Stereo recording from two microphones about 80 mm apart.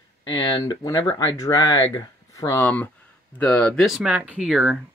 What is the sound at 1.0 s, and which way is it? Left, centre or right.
Speech, left.